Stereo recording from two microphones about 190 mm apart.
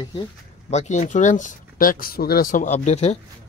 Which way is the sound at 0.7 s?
35° left (ahead or behind).